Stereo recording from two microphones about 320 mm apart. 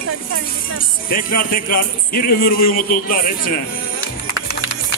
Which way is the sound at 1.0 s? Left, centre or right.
Left.